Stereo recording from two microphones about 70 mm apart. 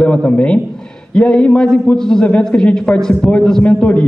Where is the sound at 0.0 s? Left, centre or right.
Centre.